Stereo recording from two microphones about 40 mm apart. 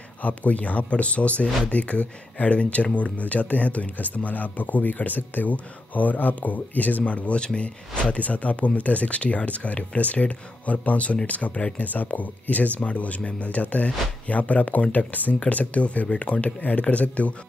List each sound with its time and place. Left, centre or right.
0.2 s speech: left
7.3 s speech: left
11.8 s speech: left